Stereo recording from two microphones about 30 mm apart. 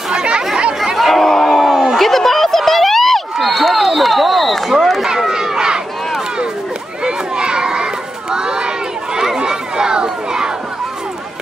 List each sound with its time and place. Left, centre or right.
0.1 s chatter: right
0.9 s crowd: centre
1.4 s a sound: centre
2.0 s crowd: centre
5.0 s a sound: centre
7.1 s children playing: right